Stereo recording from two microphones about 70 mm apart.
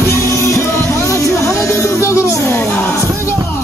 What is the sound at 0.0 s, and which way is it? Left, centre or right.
Music, left.